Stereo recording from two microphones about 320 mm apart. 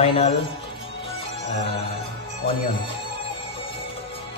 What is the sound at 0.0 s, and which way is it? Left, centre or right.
Speech, centre.